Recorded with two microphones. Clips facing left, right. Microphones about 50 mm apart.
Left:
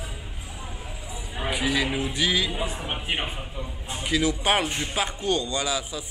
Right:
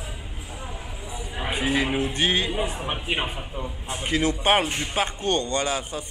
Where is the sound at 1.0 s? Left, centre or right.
Right.